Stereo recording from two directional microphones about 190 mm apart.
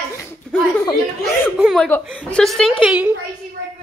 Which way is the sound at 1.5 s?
Centre (ahead or behind).